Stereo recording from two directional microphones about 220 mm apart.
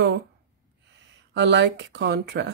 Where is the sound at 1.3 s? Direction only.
55° right (ahead or behind).